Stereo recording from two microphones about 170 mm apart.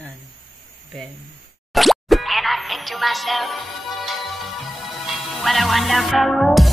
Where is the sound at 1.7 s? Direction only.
Centre (ahead or behind).